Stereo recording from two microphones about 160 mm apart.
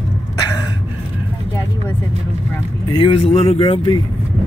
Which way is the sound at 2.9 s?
30° left (ahead or behind).